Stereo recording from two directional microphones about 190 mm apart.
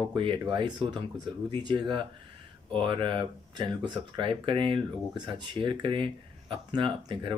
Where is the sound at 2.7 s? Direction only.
25° right (ahead or behind).